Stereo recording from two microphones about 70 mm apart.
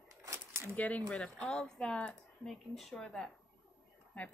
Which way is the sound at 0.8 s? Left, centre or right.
Centre.